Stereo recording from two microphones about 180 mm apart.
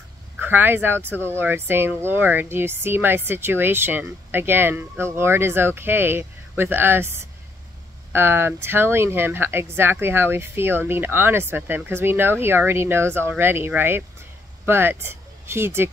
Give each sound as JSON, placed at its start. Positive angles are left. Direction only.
{"t": 0.4, "sound": "speech", "side_deg": -10}
{"t": 1.1, "sound": "speech", "side_deg": 10}
{"t": 1.4, "sound": "speech", "side_deg": -10}